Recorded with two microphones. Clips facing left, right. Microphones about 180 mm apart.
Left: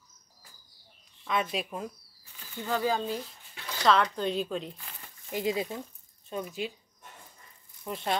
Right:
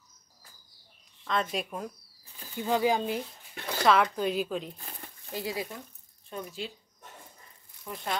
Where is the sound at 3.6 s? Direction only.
55° right (ahead or behind).